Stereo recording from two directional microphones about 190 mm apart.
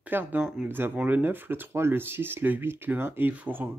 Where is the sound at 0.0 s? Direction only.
10° right (ahead or behind).